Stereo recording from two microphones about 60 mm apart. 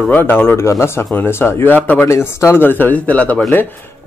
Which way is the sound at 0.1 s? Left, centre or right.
Left.